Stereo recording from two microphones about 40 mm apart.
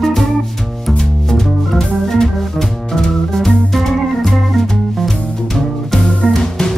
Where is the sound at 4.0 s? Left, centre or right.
Centre.